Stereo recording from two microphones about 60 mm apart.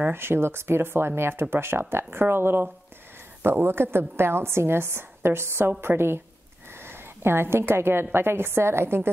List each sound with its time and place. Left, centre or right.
0.1 s a woman's voice: right